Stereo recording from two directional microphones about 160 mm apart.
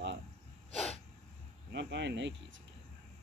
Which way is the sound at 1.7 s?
90° right.